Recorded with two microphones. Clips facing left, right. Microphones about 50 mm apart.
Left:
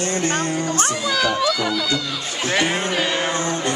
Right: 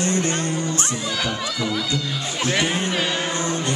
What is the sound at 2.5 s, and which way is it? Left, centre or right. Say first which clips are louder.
Speech: left 2 dB; left.